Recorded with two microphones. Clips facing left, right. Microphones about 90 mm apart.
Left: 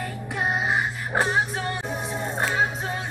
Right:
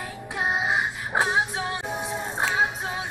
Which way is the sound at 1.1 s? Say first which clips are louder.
Even; 20° right (ahead or behind).